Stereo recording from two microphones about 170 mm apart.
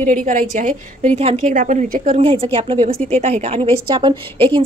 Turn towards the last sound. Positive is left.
turn(degrees=-25)  # may be behind; listen again after turning